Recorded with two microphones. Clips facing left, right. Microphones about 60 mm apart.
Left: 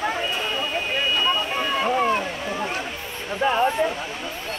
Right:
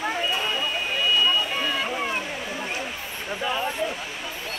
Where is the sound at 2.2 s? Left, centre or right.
Left.